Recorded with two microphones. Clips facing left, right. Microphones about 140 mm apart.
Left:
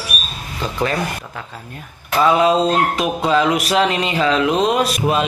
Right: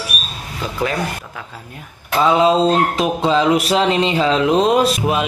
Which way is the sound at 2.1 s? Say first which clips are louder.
Even; 25° right (ahead or behind).